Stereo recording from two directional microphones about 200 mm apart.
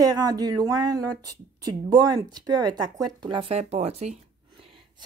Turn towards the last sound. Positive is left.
turn(degrees=-35)  # may be behind; listen again after turning